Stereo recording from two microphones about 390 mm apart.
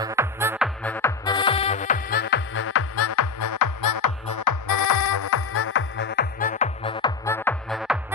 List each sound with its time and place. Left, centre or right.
0.0 s music: centre; by 5.2 s left
5.2 s music: left; by 8.0 s centre